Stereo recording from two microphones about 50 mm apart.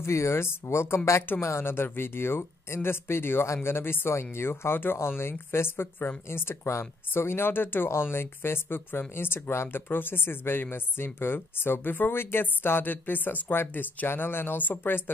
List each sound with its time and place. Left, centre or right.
0.0 s speech: left
1.7 s speech: left